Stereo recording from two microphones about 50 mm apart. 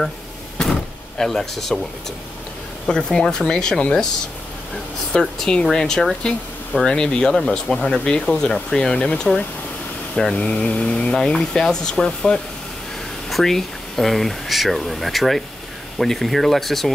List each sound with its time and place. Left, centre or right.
0.7 s speech: centre
5.1 s speech: centre
11.1 s speech: centre